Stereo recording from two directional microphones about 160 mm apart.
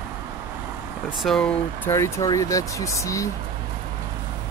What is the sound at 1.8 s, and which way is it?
Speech, 15° left (ahead or behind).